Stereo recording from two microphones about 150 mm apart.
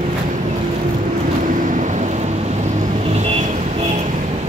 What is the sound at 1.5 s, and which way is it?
Vehicle, 60° right (ahead or behind).